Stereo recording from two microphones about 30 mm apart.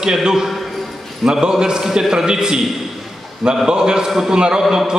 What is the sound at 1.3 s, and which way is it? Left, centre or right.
A man's voice, right.